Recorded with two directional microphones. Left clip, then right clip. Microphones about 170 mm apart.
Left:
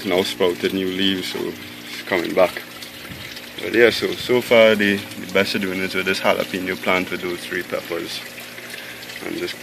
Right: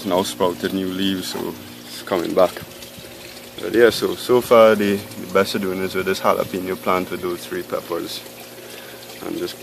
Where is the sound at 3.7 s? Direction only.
15° right (ahead or behind).